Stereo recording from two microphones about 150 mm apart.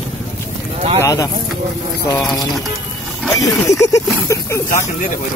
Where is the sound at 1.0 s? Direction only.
20° left (ahead or behind).